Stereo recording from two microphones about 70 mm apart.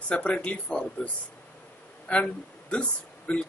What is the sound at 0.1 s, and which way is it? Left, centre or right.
Speech, centre.